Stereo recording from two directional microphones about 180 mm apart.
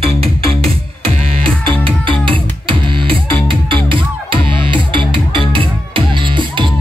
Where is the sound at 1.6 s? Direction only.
30° right (ahead or behind).